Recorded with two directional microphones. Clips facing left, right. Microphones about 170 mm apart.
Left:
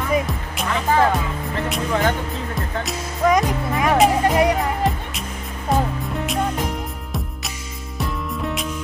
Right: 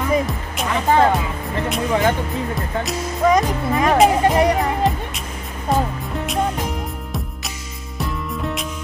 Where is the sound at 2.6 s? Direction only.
Centre (ahead or behind).